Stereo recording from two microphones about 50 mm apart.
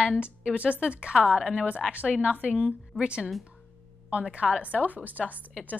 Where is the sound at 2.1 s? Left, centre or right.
Right.